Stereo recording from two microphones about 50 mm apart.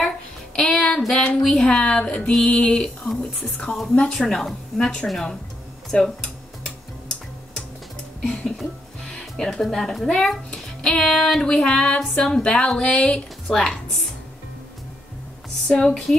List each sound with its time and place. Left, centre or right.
0.6 s child singing: centre
1.3 s music: centre
1.8 s music: left
8.2 s speech: centre
10.5 s music: centre
13.6 s speech: centre
15.5 s speech: centre